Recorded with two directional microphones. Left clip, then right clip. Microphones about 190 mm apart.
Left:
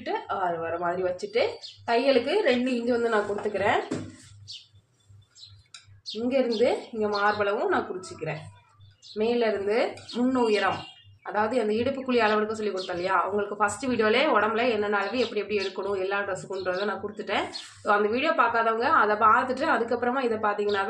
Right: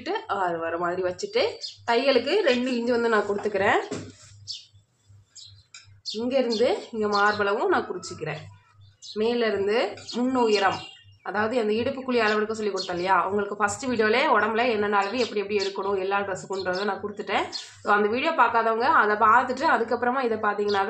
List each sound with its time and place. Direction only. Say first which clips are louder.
0.0 s a woman's voice: right 2 dB; 20° right (ahead or behind)
6.6 s a woman's voice: right 1 dB; 15° right (ahead or behind)